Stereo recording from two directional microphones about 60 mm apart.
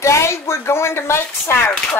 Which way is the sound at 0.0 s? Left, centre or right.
Left.